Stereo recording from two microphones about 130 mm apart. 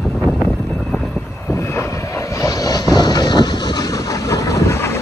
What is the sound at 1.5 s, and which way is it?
Vehicle, 20° left (ahead or behind).